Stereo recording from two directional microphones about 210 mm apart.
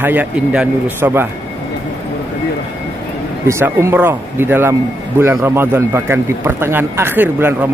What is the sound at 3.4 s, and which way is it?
Speech, 10° right (ahead or behind).